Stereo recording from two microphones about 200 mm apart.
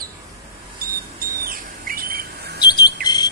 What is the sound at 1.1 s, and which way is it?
Bird, 45° right (ahead or behind).